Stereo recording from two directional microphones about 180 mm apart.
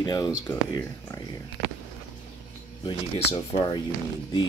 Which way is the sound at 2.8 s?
25° left (ahead or behind).